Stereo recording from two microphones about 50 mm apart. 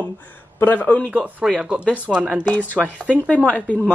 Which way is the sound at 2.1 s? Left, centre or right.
Centre.